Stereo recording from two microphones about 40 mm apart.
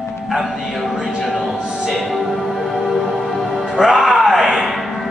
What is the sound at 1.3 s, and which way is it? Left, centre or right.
Music, centre.